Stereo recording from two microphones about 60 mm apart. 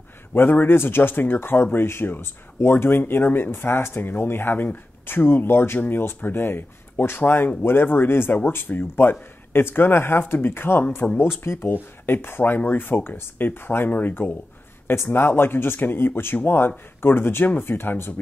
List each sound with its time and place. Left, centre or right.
0.3 s speech: left